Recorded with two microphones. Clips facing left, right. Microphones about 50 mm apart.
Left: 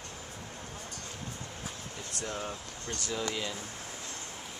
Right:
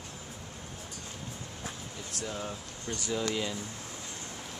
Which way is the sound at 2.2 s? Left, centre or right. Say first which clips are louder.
Even; centre.